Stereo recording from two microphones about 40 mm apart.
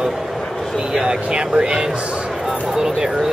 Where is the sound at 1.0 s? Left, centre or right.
Right.